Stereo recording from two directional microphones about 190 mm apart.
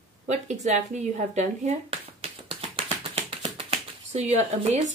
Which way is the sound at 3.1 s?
30° right (ahead or behind).